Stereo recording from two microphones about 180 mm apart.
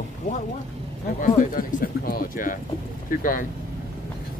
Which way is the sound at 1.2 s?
50° left (ahead or behind).